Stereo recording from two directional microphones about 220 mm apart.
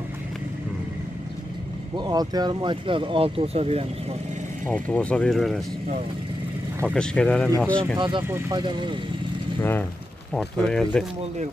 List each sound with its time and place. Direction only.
2.0 s speech: 20° right (ahead or behind)
4.6 s speech: 5° left (ahead or behind)
6.9 s speech: 5° left (ahead or behind)
8.0 s speech: 20° right (ahead or behind)
9.6 s speech: 10° left (ahead or behind)